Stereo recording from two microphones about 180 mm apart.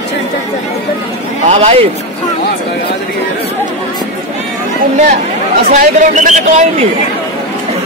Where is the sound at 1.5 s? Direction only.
35° right (ahead or behind).